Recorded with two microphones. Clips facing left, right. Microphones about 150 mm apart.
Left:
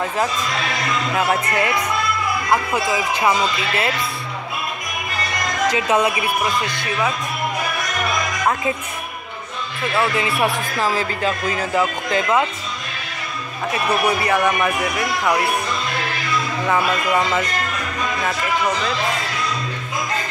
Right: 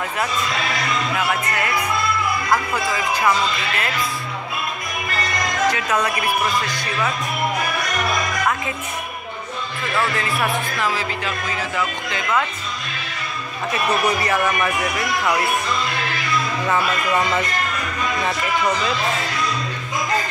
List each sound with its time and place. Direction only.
1.1 s speech: 35° left (ahead or behind)
2.5 s speech: 15° left (ahead or behind)
5.8 s speech: 25° left (ahead or behind)
10.8 s speech: 35° left (ahead or behind)
14.0 s speech: 15° left (ahead or behind)